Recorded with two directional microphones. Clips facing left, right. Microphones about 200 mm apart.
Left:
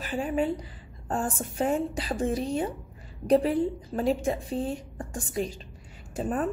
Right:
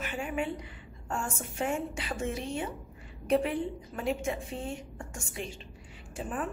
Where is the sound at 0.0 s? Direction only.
35° left (ahead or behind).